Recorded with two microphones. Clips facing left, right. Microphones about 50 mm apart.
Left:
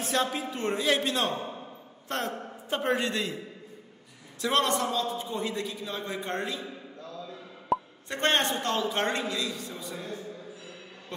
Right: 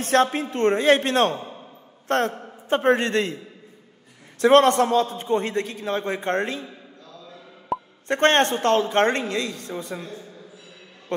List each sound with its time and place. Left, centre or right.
0.0 s a man's voice: right
4.4 s a man's voice: right
7.7 s plop: centre
8.1 s a man's voice: right